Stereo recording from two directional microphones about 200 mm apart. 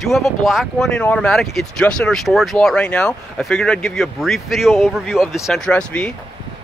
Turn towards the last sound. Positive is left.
turn(degrees=5)  # may be behind; listen again after turning